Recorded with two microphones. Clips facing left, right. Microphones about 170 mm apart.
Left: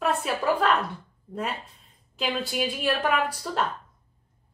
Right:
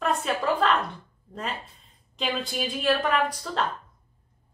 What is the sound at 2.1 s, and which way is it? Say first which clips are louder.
Speech: left 1 dB; 5° left (ahead or behind).